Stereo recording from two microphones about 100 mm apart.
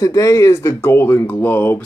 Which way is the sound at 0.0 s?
35° left (ahead or behind).